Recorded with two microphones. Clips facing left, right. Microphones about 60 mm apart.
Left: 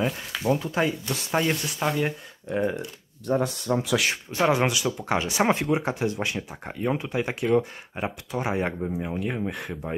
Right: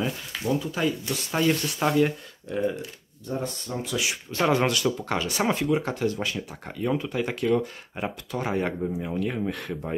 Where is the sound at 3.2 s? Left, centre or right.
Left.